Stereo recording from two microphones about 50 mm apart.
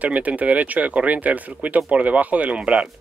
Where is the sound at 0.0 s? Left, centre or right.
Right.